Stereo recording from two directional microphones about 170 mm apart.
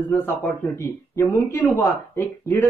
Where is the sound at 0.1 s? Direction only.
15° left (ahead or behind).